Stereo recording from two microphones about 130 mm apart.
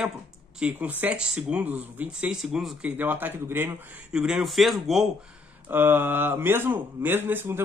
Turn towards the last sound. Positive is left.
turn(degrees=-15)  # may be behind; listen again after turning